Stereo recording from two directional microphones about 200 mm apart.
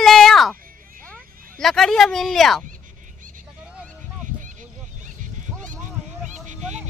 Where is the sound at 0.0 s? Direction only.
Centre (ahead or behind).